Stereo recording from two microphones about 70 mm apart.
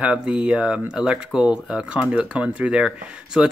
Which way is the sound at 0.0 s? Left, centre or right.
Centre.